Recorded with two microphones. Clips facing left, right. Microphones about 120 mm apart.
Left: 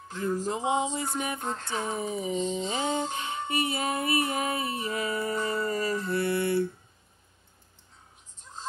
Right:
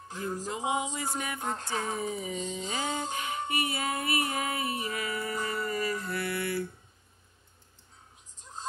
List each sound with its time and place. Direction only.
0.5 s music: 30° left (ahead or behind)
4.8 s mantra: 25° left (ahead or behind)